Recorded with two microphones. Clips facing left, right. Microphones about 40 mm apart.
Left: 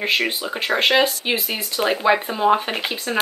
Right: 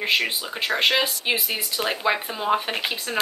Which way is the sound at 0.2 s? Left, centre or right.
Centre.